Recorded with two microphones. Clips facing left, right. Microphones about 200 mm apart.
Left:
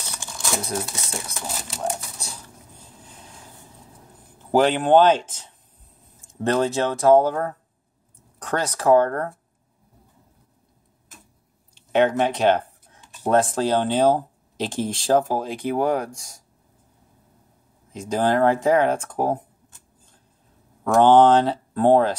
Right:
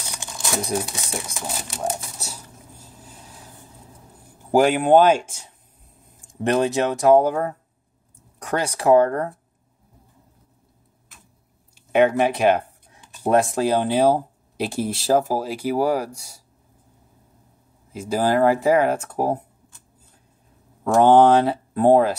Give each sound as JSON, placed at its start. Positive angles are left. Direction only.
{"t": 0.1, "sound": "crumpling", "side_deg": -15}
{"t": 4.4, "sound": "speech", "side_deg": -10}
{"t": 11.7, "sound": "speech", "side_deg": -10}
{"t": 17.9, "sound": "speech", "side_deg": -5}
{"t": 20.9, "sound": "speech", "side_deg": -10}